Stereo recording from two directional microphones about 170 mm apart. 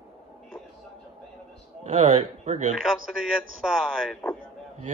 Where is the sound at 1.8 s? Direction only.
40° right (ahead or behind).